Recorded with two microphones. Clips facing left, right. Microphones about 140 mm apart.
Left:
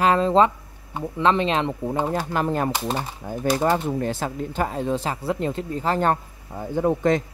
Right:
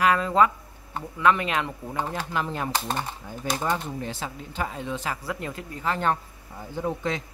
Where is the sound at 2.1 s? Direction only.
45° left (ahead or behind).